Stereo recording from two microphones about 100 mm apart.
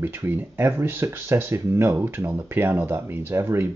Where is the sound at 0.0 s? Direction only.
20° right (ahead or behind).